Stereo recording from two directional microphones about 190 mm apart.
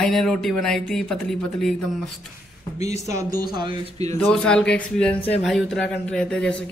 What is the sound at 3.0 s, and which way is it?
A man's voice, 15° right (ahead or behind).